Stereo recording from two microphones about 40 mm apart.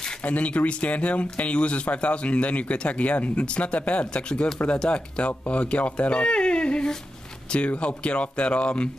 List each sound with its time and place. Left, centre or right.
0.2 s speech: left